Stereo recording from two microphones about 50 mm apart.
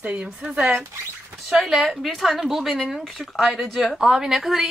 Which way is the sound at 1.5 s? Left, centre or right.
Centre.